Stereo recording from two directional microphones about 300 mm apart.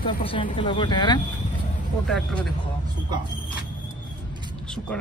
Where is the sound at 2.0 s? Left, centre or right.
Centre.